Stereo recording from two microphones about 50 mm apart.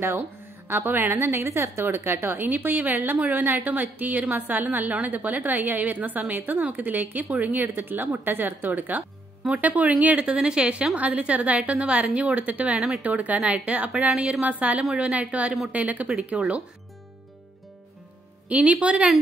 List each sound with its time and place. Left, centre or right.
0.7 s a woman's voice: right
1.1 s a woman's voice: right
2.2 s a woman's voice: right
12.7 s a woman's voice: centre
13.0 s a woman's voice: right
14.0 s a woman's voice: centre
14.4 s a woman's voice: right
18.5 s a woman's voice: right